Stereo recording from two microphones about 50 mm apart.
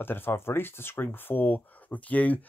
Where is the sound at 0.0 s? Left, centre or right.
Left.